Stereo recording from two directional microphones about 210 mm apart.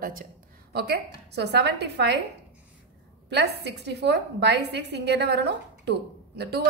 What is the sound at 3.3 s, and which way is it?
A woman's voice, 55° right (ahead or behind).